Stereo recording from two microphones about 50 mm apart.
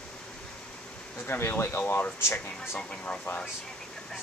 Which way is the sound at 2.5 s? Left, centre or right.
Centre.